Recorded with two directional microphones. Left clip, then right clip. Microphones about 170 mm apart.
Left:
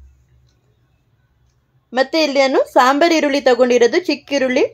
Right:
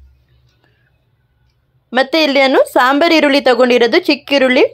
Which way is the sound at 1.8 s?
20° right (ahead or behind).